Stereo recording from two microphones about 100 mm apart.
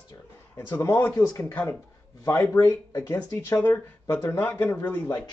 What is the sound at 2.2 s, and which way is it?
Speech, 30° left (ahead or behind).